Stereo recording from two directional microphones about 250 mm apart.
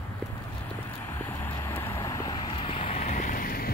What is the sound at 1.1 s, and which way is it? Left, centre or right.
Vehicle, centre.